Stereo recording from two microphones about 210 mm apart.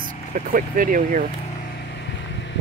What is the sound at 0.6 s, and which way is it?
Speech, 40° right (ahead or behind).